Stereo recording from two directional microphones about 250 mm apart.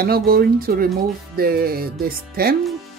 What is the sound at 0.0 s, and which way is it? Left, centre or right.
Music, right.